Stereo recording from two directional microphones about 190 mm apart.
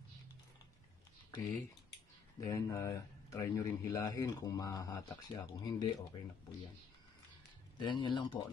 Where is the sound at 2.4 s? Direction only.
15° left (ahead or behind).